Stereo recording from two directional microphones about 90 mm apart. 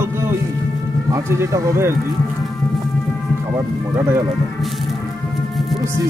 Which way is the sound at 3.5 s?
30° right (ahead or behind).